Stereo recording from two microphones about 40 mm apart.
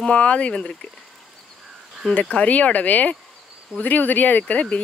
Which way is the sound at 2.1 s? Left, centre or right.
Left.